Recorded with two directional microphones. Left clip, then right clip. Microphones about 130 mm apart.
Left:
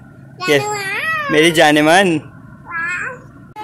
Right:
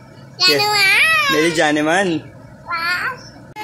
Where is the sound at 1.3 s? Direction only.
30° left (ahead or behind).